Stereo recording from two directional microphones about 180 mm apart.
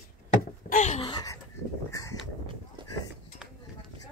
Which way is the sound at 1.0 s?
25° left (ahead or behind).